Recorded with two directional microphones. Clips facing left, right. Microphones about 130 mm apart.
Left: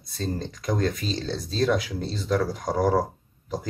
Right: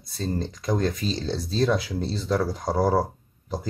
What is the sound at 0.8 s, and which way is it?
Speech, 25° right (ahead or behind).